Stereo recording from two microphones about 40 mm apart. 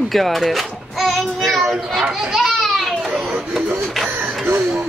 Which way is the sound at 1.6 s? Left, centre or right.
Centre.